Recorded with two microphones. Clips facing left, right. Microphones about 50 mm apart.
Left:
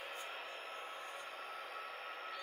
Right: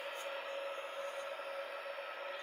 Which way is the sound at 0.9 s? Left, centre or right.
Centre.